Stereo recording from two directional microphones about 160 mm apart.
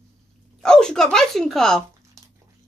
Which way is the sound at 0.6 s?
5° left (ahead or behind).